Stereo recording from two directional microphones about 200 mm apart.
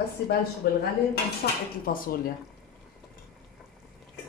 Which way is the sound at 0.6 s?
50° left (ahead or behind).